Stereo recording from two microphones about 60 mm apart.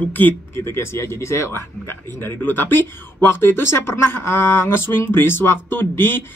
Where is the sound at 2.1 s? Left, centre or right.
Left.